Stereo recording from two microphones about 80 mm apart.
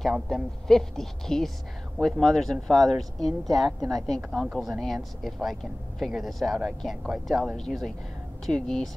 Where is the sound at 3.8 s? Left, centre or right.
Right.